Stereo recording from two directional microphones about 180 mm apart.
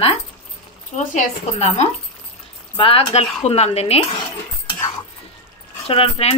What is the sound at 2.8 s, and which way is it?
Speech, 30° left (ahead or behind).